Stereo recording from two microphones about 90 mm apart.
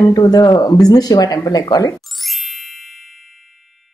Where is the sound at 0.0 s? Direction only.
45° left (ahead or behind).